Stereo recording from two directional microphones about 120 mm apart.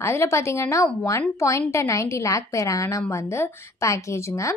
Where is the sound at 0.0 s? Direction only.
25° left (ahead or behind).